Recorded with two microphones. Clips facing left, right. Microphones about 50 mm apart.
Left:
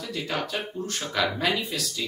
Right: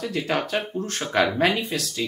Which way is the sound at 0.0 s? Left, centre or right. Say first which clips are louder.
Right 5 dB; right.